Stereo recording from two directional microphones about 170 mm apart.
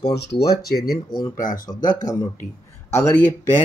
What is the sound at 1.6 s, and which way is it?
Speech, 20° left (ahead or behind).